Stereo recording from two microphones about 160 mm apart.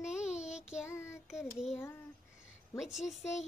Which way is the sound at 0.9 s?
15° left (ahead or behind).